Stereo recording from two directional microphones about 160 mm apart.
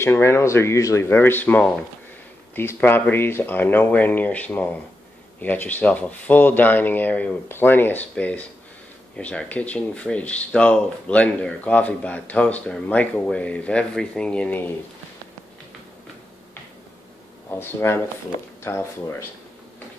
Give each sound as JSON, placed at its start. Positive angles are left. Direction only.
{"t": 0.0, "sound": "speech", "side_deg": 15}
{"t": 17.6, "sound": "speech", "side_deg": 15}